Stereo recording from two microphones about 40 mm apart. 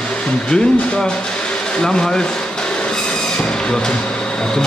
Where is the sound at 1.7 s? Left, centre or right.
Centre.